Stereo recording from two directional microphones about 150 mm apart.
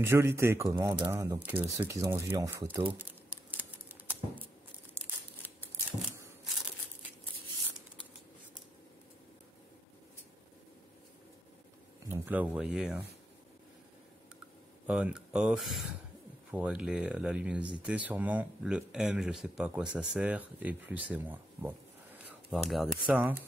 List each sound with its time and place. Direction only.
0.0 s speech: 15° right (ahead or behind)
2.0 s crumpling: 15° right (ahead or behind)
12.1 s speech: 10° right (ahead or behind)
14.9 s speech: 10° right (ahead or behind)